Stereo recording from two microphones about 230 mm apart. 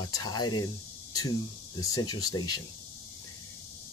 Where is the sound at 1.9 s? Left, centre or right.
Centre.